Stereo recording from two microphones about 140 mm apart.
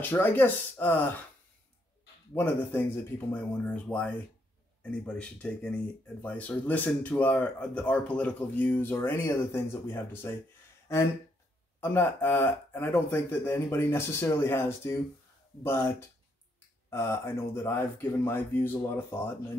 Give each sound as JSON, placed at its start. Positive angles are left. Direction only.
{"t": 0.0, "sound": "speech", "side_deg": 15}
{"t": 2.3, "sound": "speech", "side_deg": 15}
{"t": 11.8, "sound": "speech", "side_deg": 15}
{"t": 16.9, "sound": "speech", "side_deg": 20}